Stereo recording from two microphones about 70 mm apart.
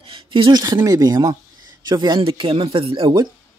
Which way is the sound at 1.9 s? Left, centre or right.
Right.